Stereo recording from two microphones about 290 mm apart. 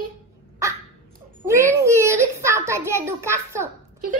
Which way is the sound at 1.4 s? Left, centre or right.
Centre.